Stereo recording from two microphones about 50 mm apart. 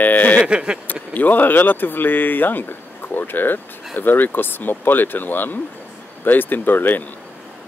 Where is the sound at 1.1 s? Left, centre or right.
Left.